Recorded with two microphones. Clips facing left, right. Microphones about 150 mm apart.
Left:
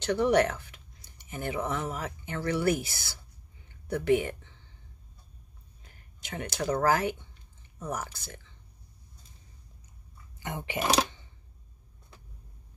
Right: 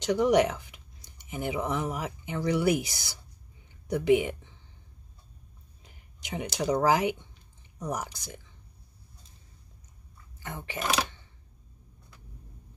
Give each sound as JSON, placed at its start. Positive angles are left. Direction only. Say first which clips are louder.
{"t": 0.0, "sound": "speech", "louder": "right 1 dB", "side_deg": -10}
{"t": 3.6, "sound": "a sound", "louder": "right 2 dB", "side_deg": -15}
{"t": 5.9, "sound": "speech", "louder": "right 3 dB", "side_deg": -15}
{"t": 10.4, "sound": "speech", "louder": "left 3 dB", "side_deg": 20}